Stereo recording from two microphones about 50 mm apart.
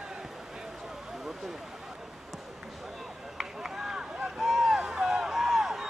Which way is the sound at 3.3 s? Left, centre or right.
Centre.